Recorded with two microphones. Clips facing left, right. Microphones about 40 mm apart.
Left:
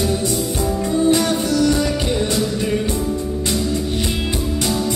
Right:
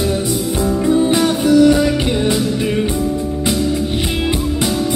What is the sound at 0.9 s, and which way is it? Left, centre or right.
Music, right.